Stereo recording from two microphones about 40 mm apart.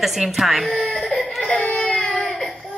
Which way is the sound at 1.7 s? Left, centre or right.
Left.